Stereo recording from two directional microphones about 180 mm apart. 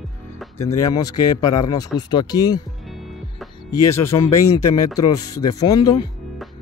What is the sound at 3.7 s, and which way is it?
Speech, 15° left (ahead or behind).